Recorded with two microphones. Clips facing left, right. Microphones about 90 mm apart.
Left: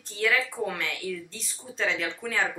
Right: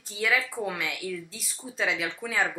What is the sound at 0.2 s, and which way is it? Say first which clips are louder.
A woman's voice: left 1 dB; 5° right (ahead or behind).